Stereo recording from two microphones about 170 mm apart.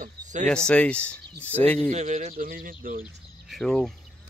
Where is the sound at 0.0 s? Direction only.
45° right (ahead or behind).